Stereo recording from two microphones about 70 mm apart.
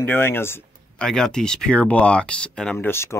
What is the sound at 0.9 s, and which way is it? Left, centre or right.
Speech, centre.